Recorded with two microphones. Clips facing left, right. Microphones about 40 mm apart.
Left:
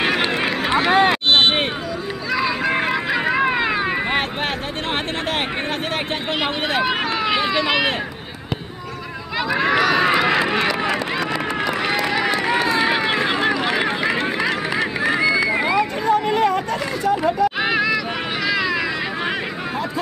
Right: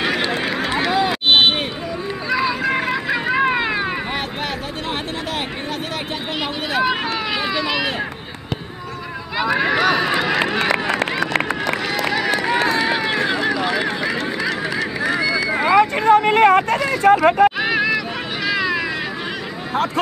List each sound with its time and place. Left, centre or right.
0.0 s run: left
2.6 s run: centre
3.1 s a sound: centre
6.8 s run: centre
9.4 s run: centre
9.9 s run: centre
12.7 s run: centre
15.7 s a sound: right
17.7 s hubbub: centre
18.5 s a sound: centre